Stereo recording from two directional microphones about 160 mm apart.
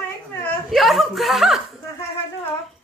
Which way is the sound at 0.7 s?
Centre (ahead or behind).